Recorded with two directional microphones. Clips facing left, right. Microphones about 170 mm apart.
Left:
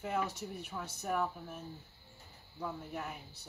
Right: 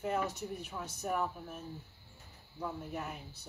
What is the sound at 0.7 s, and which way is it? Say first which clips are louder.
Speech: left 1 dB; 10° right (ahead or behind).